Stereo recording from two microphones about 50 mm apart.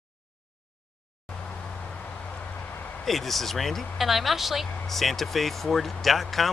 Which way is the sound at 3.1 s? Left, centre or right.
Centre.